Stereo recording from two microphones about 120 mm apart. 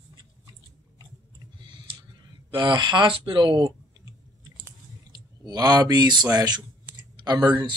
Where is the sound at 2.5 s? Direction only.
40° right (ahead or behind).